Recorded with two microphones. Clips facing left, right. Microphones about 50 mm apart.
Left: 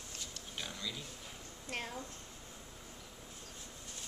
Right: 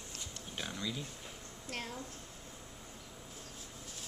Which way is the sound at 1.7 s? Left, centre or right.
Centre.